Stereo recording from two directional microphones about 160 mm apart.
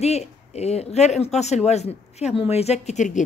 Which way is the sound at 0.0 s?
40° left (ahead or behind).